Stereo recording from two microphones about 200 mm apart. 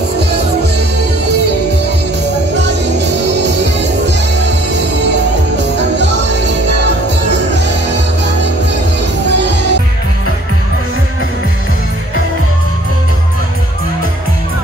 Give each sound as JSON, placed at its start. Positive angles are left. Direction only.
{"t": 0.2, "sound": "music", "side_deg": -55}
{"t": 2.5, "sound": "music", "side_deg": -60}
{"t": 5.6, "sound": "music", "side_deg": -60}
{"t": 9.3, "sound": "music", "side_deg": -60}